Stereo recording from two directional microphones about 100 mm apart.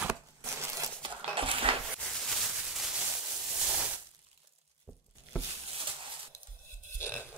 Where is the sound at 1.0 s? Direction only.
60° right (ahead or behind).